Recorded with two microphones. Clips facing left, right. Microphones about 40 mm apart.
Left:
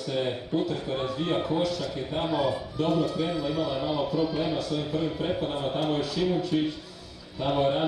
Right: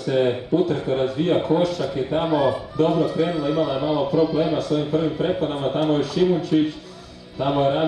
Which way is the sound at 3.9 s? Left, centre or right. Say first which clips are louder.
Right 9 dB; right.